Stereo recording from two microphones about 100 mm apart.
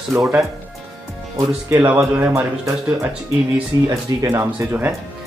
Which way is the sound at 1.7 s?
20° right (ahead or behind).